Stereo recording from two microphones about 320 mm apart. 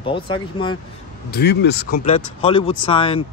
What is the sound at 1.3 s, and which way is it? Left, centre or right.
Speech, left.